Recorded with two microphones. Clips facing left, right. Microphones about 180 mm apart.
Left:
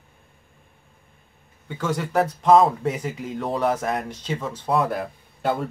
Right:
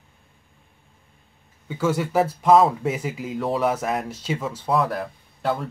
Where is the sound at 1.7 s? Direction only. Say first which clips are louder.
Right 3 dB; 5° right (ahead or behind).